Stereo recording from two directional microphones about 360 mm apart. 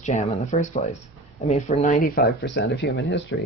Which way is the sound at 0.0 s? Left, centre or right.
Centre.